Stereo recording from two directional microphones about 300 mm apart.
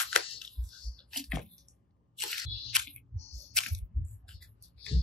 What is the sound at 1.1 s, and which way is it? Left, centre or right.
Typing, centre.